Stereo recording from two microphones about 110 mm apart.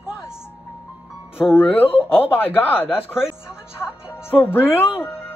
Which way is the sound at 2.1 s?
20° left (ahead or behind).